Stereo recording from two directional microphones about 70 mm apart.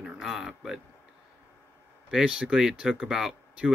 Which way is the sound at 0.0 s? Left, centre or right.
Centre.